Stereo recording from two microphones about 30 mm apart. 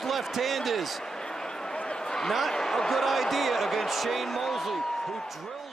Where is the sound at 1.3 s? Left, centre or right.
Left.